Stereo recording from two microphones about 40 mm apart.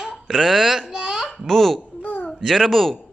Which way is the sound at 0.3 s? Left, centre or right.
Centre.